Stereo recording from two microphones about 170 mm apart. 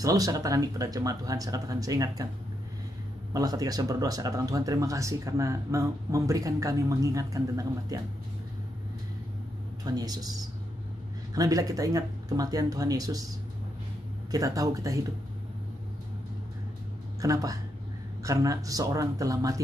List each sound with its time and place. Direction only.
0.0 s speech: 20° right (ahead or behind)
3.3 s speech: 20° right (ahead or behind)
9.8 s speech: 25° right (ahead or behind)
14.3 s speech: 20° right (ahead or behind)
17.2 s speech: 20° right (ahead or behind)